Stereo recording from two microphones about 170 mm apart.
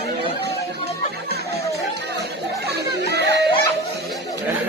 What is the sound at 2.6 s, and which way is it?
Chatter, 85° right.